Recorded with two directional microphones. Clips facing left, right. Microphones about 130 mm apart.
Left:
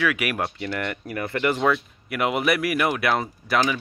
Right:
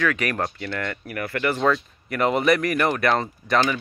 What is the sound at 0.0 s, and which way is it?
Speech, 10° left (ahead or behind).